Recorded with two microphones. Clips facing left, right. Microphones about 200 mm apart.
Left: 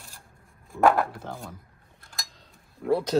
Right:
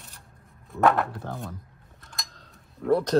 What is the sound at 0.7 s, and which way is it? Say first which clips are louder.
Speech: left 1 dB; centre (ahead or behind).